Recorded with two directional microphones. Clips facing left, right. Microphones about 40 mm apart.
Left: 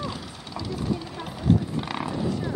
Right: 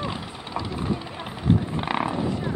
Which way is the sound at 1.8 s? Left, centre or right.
Right.